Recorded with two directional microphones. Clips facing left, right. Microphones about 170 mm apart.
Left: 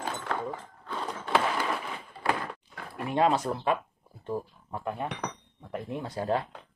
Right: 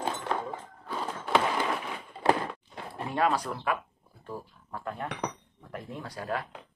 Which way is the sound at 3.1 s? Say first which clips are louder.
Left 3 dB; 20° left (ahead or behind).